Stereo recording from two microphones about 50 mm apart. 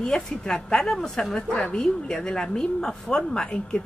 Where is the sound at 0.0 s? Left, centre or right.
Centre.